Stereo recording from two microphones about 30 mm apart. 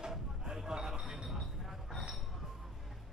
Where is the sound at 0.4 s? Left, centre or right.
Centre.